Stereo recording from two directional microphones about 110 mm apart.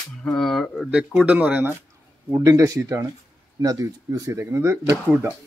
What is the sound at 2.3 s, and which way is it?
A man's voice, 35° right (ahead or behind).